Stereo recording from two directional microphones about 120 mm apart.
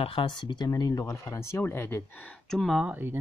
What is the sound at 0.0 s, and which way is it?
Speech, 45° left (ahead or behind).